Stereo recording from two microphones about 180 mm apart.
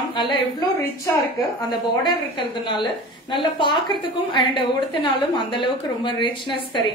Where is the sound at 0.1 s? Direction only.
25° left (ahead or behind).